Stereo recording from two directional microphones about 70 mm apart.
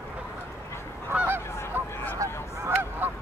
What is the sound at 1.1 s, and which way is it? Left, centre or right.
Goose, right.